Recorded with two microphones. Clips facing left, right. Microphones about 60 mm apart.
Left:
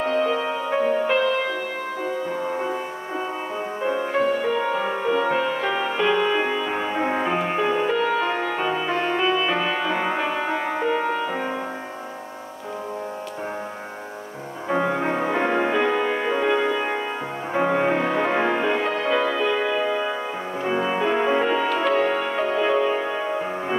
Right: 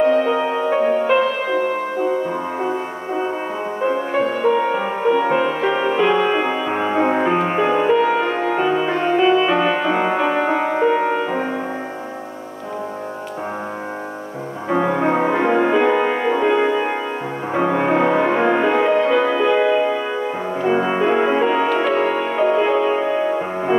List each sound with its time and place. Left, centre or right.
0.1 s music: centre
4.6 s music: centre
7.2 s music: centre
8.0 s music: centre
14.7 s music: centre
15.0 s music: right
15.3 s music: centre
17.6 s music: centre
17.9 s music: right
18.2 s music: centre